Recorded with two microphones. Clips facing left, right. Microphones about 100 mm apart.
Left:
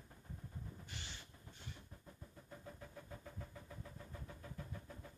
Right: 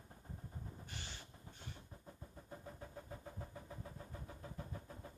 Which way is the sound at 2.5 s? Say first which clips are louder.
Right 2 dB; 35° right (ahead or behind).